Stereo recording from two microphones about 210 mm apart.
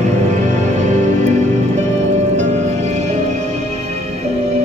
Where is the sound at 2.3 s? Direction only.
35° right (ahead or behind).